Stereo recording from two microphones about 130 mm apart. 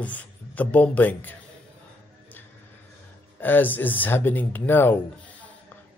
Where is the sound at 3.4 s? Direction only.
15° left (ahead or behind).